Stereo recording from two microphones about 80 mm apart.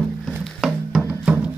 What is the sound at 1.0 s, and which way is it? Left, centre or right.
Music, centre.